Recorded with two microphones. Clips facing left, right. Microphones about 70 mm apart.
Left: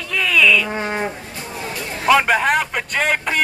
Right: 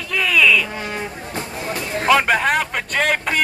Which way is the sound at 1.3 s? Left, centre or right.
Right.